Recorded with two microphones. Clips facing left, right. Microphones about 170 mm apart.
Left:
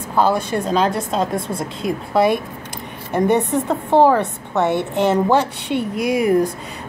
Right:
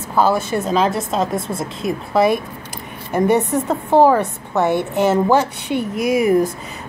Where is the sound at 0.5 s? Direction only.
5° right (ahead or behind).